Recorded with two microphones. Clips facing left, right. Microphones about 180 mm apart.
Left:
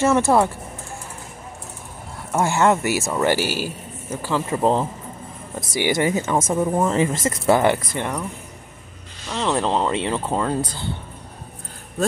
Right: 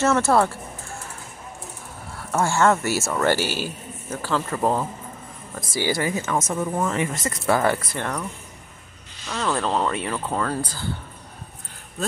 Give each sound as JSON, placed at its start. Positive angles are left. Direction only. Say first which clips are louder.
{"t": 0.0, "sound": "a man's voice", "louder": "left 2 dB", "side_deg": 15}
{"t": 2.3, "sound": "a man's voice", "louder": "left 1 dB", "side_deg": 15}
{"t": 9.3, "sound": "speech", "louder": "left 3 dB", "side_deg": 20}